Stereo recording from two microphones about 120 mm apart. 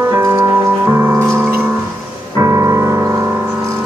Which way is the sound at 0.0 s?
20° right (ahead or behind).